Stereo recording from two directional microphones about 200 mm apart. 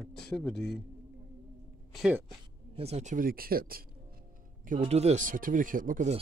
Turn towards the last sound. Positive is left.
turn(degrees=-40)  # may be behind; listen again after turning